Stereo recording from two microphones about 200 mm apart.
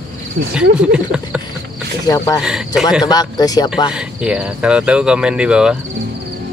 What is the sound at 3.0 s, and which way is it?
Speech, 20° left (ahead or behind).